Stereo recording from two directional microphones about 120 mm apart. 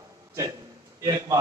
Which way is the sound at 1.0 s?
30° right (ahead or behind).